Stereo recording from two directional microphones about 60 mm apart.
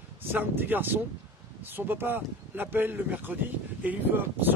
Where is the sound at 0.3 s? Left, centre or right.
Right.